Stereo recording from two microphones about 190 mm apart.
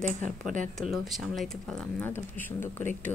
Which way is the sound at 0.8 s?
Centre (ahead or behind).